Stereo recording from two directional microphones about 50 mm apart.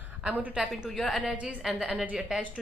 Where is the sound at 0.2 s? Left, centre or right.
Right.